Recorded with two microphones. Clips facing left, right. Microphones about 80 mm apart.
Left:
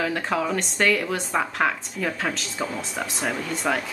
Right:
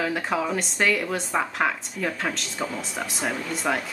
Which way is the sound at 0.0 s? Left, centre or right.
Centre.